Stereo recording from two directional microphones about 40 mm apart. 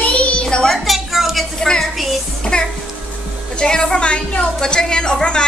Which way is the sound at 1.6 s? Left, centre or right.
Centre.